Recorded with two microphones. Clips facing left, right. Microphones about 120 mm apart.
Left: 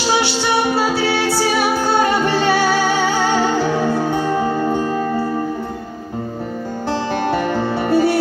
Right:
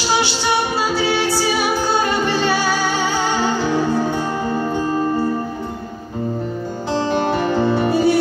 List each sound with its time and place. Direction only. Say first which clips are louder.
0.7 s music: left 1 dB; 60° left (ahead or behind)
7.4 s music: right 2 dB; 55° left (ahead or behind)